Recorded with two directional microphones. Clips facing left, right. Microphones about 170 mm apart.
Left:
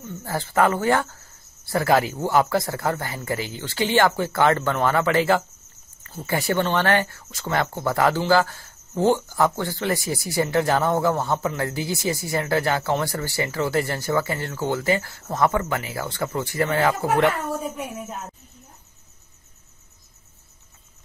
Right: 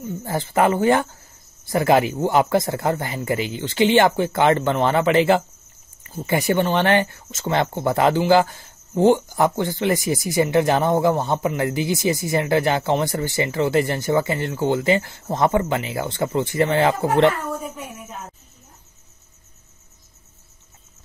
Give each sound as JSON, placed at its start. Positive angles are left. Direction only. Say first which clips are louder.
{"t": 0.0, "sound": "speech", "louder": "right 3 dB", "side_deg": -20}